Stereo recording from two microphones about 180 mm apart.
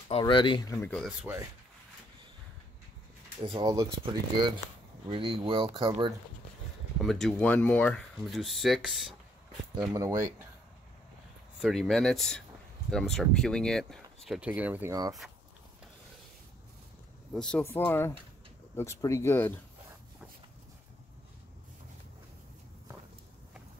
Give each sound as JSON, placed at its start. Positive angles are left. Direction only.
{"t": 0.2, "sound": "speech", "side_deg": 25}
{"t": 1.2, "sound": "speech", "side_deg": -15}
{"t": 3.6, "sound": "speech", "side_deg": -20}
{"t": 7.0, "sound": "speech", "side_deg": 0}
{"t": 9.9, "sound": "speech", "side_deg": -15}
{"t": 11.6, "sound": "speech", "side_deg": 0}
{"t": 17.3, "sound": "speech", "side_deg": 5}